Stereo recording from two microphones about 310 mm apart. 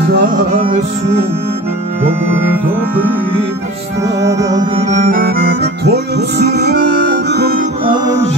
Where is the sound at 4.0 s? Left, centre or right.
Centre.